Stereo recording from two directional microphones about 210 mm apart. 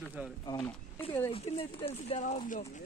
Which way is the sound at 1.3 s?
25° left (ahead or behind).